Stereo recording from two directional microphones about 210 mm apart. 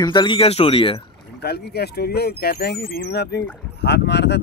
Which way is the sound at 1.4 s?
50° left (ahead or behind).